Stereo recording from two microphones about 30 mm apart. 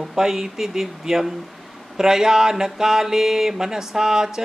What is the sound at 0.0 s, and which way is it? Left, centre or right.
Speech, centre.